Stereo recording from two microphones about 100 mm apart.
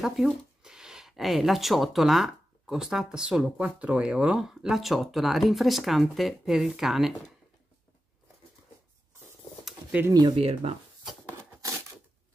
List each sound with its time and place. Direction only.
0.0 s speech: 5° right (ahead or behind)
10.3 s speech: 80° right